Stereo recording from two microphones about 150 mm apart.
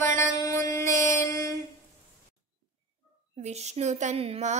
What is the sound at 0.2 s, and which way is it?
Mantra, 20° left (ahead or behind).